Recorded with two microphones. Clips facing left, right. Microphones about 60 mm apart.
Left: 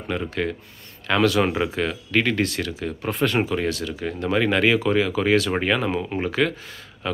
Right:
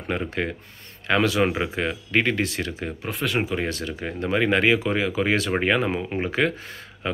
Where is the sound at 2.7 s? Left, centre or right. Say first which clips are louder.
Left 2 dB; right.